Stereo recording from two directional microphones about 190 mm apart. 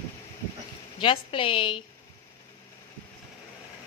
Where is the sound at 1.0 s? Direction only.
25° left (ahead or behind).